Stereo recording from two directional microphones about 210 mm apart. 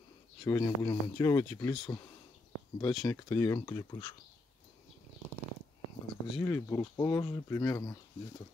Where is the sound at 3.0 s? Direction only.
15° left (ahead or behind).